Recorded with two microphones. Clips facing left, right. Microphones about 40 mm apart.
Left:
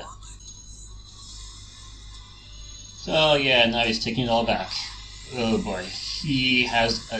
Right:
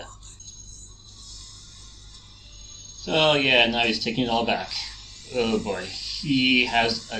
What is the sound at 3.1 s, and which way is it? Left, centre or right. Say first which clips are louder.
Speech: even; centre.